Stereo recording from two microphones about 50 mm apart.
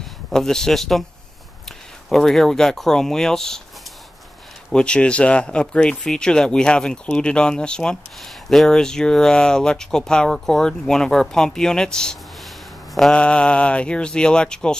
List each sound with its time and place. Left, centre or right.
0.3 s speech: centre
2.0 s speech: centre
4.7 s speech: left
8.2 s a sound: centre
8.6 s speech: centre